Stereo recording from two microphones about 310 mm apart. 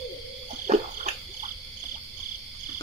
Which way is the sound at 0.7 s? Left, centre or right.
Centre.